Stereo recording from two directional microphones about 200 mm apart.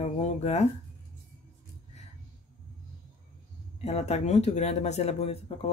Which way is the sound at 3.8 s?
35° left (ahead or behind).